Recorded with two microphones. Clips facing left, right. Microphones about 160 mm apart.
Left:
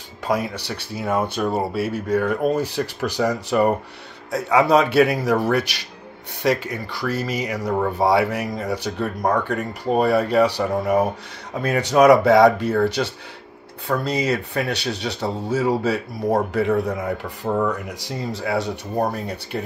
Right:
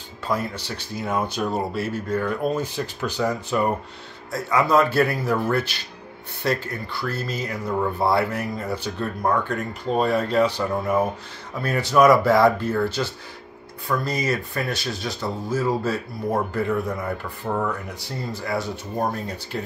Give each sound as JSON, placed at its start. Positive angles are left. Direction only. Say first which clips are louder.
{"t": 0.6, "sound": "speech", "louder": "left 2 dB", "side_deg": 65}
{"t": 7.7, "sound": "speech", "louder": "left 3 dB", "side_deg": 65}
{"t": 17.5, "sound": "speech", "louder": "left 4 dB", "side_deg": 50}
{"t": 18.3, "sound": "speech", "louder": "left 3 dB", "side_deg": 70}